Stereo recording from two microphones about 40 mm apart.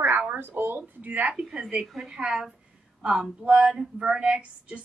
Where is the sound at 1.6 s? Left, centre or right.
Right.